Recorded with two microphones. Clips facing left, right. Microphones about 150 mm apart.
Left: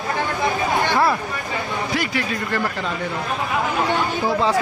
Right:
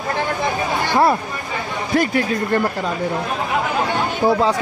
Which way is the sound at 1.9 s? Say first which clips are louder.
Right 9 dB; 45° right (ahead or behind).